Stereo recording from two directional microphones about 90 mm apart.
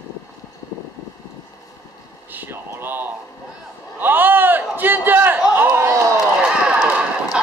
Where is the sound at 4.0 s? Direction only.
20° right (ahead or behind).